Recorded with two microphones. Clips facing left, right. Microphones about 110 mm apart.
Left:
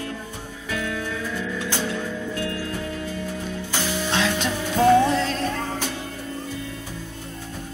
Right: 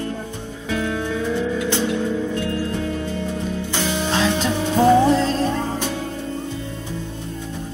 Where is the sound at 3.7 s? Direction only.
25° right (ahead or behind).